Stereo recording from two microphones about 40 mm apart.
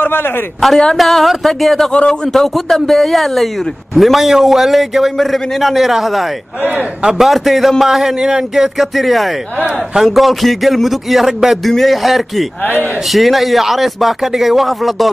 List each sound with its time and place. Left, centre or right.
0.0 s a sound: left
0.6 s a man's voice: centre
1.9 s speech: centre
2.3 s a man's voice: centre